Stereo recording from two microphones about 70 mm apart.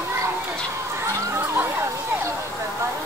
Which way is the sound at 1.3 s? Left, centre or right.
Right.